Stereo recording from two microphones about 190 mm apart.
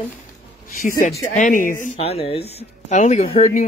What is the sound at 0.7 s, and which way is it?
Speech, 45° left (ahead or behind).